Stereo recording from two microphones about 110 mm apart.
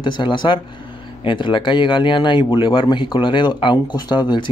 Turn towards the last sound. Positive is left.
turn(degrees=45)  # may be behind; listen again after turning